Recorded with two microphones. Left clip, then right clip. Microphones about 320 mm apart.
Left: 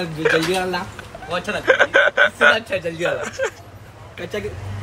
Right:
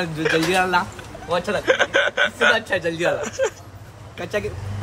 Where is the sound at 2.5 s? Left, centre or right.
Right.